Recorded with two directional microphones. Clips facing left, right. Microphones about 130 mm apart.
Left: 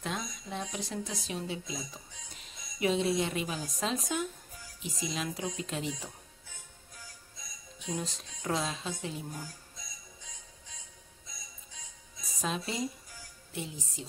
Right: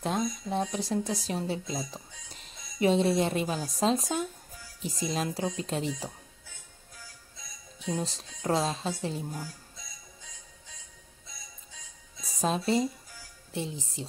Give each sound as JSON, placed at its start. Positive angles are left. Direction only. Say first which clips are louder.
{"t": 0.0, "sound": "speech", "louder": "right 8 dB", "side_deg": -40}
{"t": 7.9, "sound": "speech", "louder": "right 4 dB", "side_deg": -35}
{"t": 12.4, "sound": "speech", "louder": "right 8 dB", "side_deg": -35}
{"t": 13.5, "sound": "music", "louder": "right 5 dB", "side_deg": -30}